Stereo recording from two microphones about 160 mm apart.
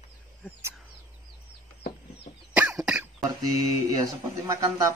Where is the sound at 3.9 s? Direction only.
20° right (ahead or behind).